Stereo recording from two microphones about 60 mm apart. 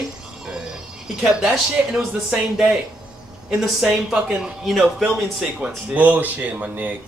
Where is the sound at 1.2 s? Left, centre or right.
Centre.